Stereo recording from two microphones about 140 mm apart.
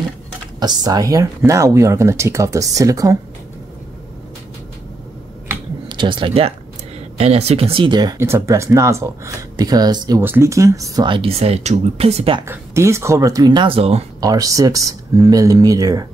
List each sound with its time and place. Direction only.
0.6 s speech: 30° right (ahead or behind)
5.9 s speech: 35° right (ahead or behind)
8.2 s speech: 20° right (ahead or behind)
10.2 s speech: 15° right (ahead or behind)
11.1 s speech: 40° right (ahead or behind)
12.4 s speech: 20° right (ahead or behind); by 14.0 s 45° right (ahead or behind)
14.2 s speech: 25° right (ahead or behind)